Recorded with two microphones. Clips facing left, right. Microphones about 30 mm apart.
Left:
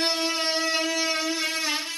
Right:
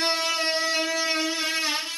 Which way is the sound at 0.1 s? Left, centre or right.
Centre.